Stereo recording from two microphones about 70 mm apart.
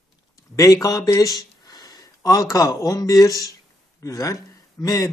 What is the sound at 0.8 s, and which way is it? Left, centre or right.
Speech, left.